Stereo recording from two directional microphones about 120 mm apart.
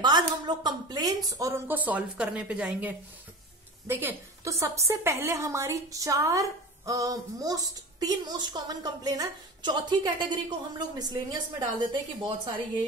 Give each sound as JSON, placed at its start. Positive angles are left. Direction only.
{"t": 0.0, "sound": "a woman's voice", "side_deg": -35}
{"t": 1.7, "sound": "a woman's voice", "side_deg": -15}